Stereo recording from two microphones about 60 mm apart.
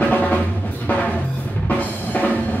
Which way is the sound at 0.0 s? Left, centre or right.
Left.